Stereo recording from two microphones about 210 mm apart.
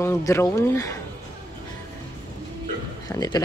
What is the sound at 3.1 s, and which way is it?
Speech, 20° left (ahead or behind).